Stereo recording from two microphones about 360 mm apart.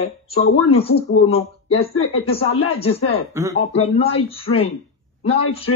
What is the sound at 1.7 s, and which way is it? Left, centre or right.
Speech, left.